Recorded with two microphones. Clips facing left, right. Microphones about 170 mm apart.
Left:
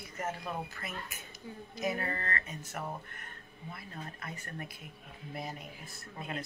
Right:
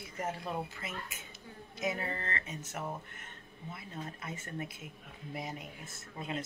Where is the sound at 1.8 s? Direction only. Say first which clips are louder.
Left 1 dB; 20° right (ahead or behind).